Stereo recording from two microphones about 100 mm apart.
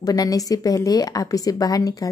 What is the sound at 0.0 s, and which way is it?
A woman's voice, 35° left (ahead or behind).